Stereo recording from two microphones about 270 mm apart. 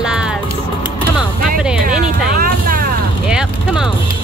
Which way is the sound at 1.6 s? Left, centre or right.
Centre.